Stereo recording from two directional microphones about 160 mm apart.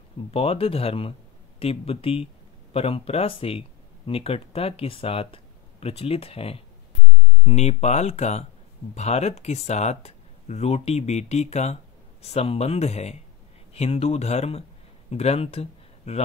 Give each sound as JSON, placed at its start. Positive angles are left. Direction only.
{"t": 0.3, "sound": "speech", "side_deg": 40}